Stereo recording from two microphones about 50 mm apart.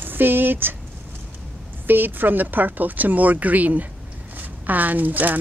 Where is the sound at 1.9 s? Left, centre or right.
Right.